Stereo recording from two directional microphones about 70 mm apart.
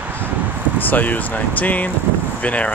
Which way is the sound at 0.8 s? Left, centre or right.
Left.